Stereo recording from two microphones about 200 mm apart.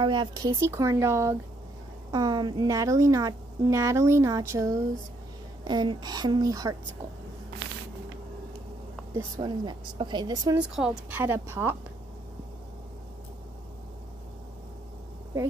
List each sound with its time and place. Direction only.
0.0 s a woman's voice: 20° right (ahead or behind)
9.1 s a woman's voice: 20° right (ahead or behind)
10.7 s a woman's voice: 5° right (ahead or behind)